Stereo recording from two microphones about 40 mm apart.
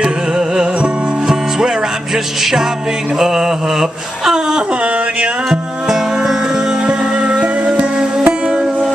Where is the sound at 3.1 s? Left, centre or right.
Centre.